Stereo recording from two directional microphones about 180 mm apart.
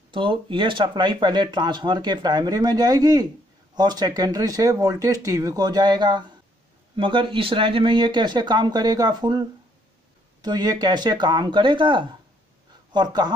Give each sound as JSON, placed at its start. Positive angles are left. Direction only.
{"t": 0.1, "sound": "speech", "side_deg": -30}
{"t": 10.4, "sound": "speech", "side_deg": -20}